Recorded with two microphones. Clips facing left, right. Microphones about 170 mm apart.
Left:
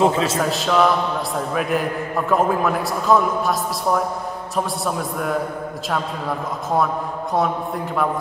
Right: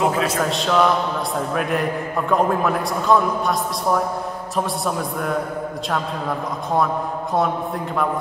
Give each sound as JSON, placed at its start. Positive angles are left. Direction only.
{"t": 0.0, "sound": "a man's voice", "side_deg": 25}
{"t": 0.5, "sound": "a man's voice", "side_deg": 0}
{"t": 7.3, "sound": "a man's voice", "side_deg": 0}